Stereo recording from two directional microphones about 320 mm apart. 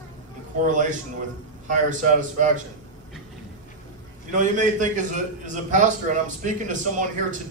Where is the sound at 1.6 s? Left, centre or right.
Right.